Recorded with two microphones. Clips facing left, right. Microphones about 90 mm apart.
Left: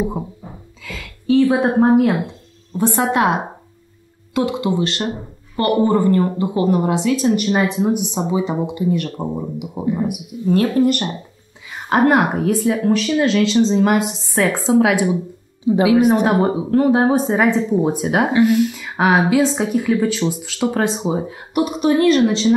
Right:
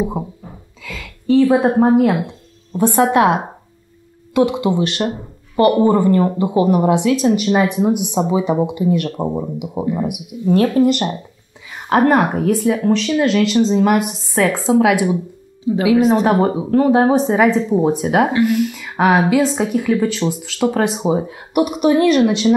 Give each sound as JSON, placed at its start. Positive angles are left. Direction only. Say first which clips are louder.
{"t": 0.8, "sound": "speech", "louder": "right 1 dB", "side_deg": 0}
{"t": 2.8, "sound": "speech", "louder": "right 4 dB", "side_deg": -15}
{"t": 7.1, "sound": "speech", "louder": "right 2 dB", "side_deg": -5}
{"t": 7.7, "sound": "speech", "louder": "right 2 dB", "side_deg": -15}
{"t": 10.5, "sound": "speech", "louder": "right 2 dB", "side_deg": -5}
{"t": 10.9, "sound": "speech", "louder": "right 2 dB", "side_deg": -15}
{"t": 11.9, "sound": "speech", "louder": "right 1 dB", "side_deg": 5}
{"t": 15.6, "sound": "speech", "louder": "even", "side_deg": 15}
{"t": 16.3, "sound": "speech", "louder": "right 1 dB", "side_deg": 5}
{"t": 17.6, "sound": "speech", "louder": "right 2 dB", "side_deg": -5}
{"t": 18.3, "sound": "speech", "louder": "left 2 dB", "side_deg": 20}
{"t": 18.6, "sound": "speech", "louder": "right 1 dB", "side_deg": 5}
{"t": 20.8, "sound": "speech", "louder": "right 2 dB", "side_deg": -10}